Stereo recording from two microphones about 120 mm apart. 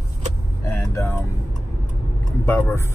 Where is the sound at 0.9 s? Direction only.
25° left (ahead or behind).